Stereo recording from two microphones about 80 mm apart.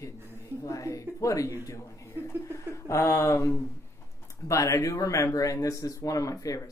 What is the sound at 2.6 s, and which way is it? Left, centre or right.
Speech, left.